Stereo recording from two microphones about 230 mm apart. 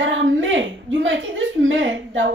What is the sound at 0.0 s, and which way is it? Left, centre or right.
A woman's voice, right.